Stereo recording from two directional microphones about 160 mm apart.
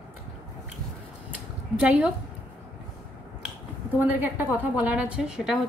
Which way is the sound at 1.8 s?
5° right (ahead or behind).